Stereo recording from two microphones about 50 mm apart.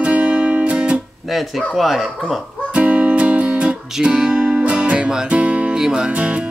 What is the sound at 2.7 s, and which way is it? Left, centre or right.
Music, right.